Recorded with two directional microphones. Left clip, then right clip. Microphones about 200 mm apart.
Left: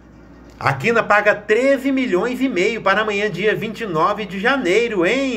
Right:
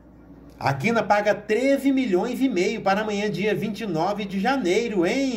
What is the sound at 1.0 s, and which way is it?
A man's voice, 25° right (ahead or behind).